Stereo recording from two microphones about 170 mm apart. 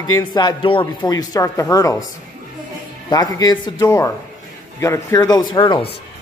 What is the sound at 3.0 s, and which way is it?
A man's voice, 20° left (ahead or behind).